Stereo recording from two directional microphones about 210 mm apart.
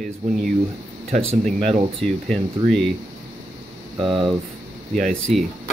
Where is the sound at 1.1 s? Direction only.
30° right (ahead or behind).